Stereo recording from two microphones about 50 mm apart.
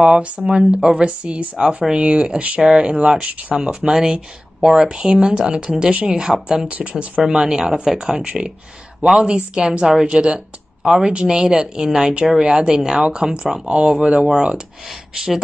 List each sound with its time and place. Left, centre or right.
0.0 s speech: centre
6.7 s speech: right
7.2 s speech: centre